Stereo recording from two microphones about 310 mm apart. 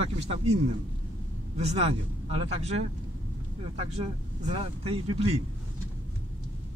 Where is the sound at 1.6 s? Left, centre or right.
Centre.